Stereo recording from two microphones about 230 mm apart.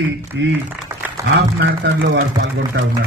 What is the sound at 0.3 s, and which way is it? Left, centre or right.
A man's voice, right.